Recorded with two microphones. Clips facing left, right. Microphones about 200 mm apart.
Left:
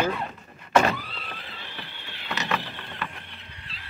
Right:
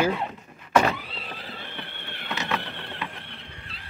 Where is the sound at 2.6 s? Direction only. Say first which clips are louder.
Right 1 dB; 65° right (ahead or behind).